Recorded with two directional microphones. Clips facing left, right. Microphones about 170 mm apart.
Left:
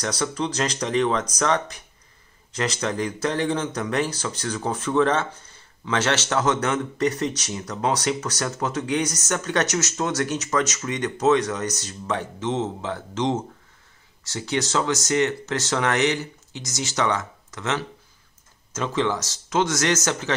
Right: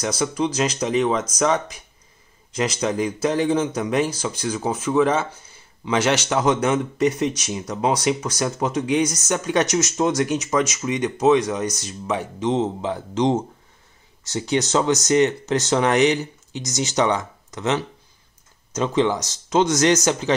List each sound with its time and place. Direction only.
0.0 s speech: 10° right (ahead or behind)